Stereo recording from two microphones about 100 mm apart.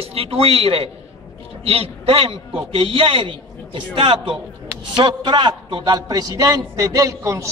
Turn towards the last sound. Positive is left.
turn(degrees=-30)  # may be behind; listen again after turning